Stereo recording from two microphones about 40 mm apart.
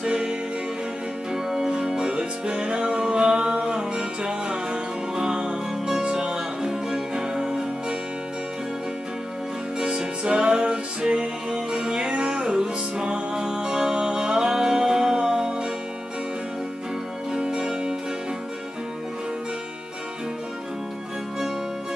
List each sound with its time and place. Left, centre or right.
0.0 s music: right
9.8 s music: right
17.5 s music: right